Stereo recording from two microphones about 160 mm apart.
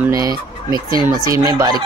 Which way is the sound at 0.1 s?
20° right (ahead or behind).